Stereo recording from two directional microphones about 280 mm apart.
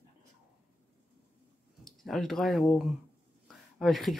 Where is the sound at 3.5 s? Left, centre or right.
Centre.